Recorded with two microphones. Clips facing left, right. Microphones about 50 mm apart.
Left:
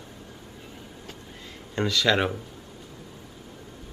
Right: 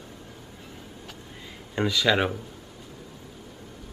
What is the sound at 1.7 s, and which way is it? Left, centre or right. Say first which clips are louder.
Speech: even; centre.